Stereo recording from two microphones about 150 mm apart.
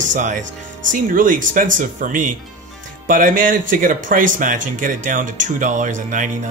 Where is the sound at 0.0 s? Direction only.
55° right (ahead or behind).